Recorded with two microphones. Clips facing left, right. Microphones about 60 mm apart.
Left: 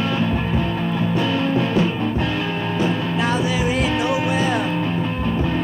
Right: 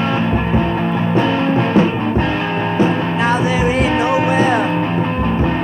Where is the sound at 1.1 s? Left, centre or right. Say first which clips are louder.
Right 5 dB; right.